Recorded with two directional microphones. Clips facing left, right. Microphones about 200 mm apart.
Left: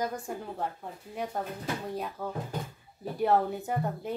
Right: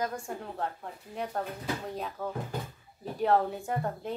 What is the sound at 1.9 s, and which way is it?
A woman's voice, 5° left (ahead or behind).